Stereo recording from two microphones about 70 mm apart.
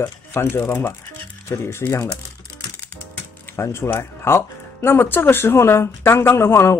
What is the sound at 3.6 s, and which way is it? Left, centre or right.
Speech, left.